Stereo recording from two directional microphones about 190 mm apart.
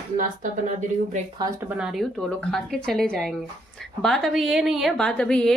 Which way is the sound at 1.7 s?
5° right (ahead or behind).